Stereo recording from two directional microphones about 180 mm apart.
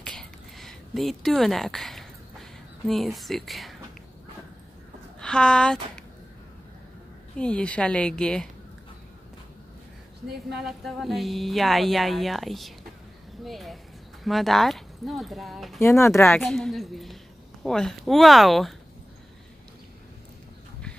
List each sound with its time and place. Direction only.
0.0 s a sound: 5° left (ahead or behind)
2.9 s speech: centre (ahead or behind)
5.2 s speech: 5° left (ahead or behind)
7.3 s speech: 5° left (ahead or behind)
10.6 s speech: centre (ahead or behind)
15.8 s speech: 15° left (ahead or behind)
16.3 s speech: centre (ahead or behind)